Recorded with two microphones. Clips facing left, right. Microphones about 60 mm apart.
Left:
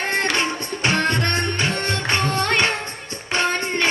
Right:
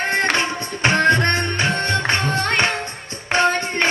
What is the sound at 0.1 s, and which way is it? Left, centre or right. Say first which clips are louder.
Music: right 1 dB; right.